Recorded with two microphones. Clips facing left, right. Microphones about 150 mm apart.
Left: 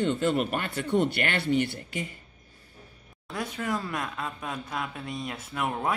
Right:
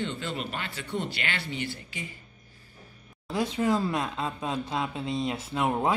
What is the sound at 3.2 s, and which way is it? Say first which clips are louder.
Speech: right 6 dB; 25° right (ahead or behind).